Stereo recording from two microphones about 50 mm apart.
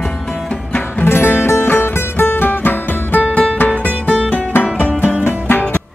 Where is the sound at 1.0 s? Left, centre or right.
Left.